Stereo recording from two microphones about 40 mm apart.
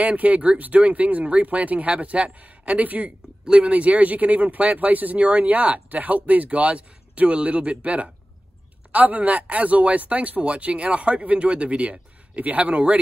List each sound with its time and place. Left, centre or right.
0.0 s speech: right